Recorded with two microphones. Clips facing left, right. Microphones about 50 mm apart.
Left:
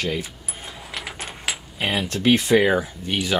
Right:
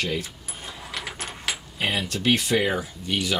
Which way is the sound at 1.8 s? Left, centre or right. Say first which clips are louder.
Left 2 dB; centre.